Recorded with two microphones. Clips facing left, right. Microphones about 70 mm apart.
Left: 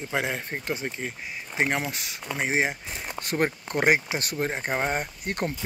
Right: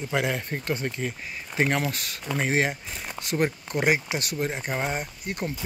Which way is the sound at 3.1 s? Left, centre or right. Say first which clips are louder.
Even; left.